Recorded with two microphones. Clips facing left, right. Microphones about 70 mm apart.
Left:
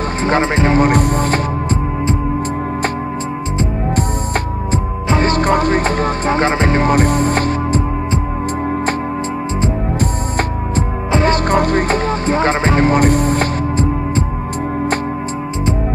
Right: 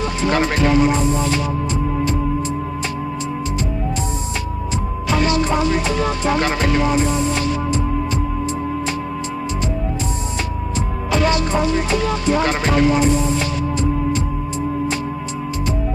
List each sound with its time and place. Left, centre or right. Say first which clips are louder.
0.3 s speech: left 3 dB; left
0.7 s music: left 3 dB; left
5.0 s music: left 3 dB; left
6.8 s music: left 4 dB; left
9.9 s music: left 6 dB; left
11.1 s music: left 3 dB; left
11.3 s music: left 4 dB; left